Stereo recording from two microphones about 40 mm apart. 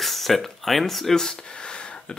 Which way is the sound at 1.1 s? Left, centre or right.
Centre.